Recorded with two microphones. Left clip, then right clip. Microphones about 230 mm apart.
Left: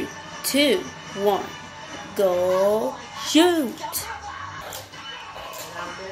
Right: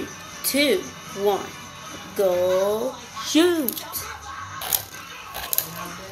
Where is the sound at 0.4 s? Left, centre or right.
Centre.